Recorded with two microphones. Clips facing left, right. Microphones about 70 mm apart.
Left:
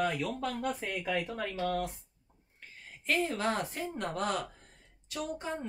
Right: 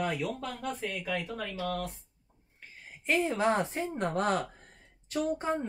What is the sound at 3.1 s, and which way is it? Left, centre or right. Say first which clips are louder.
A woman's voice: right 4 dB; right.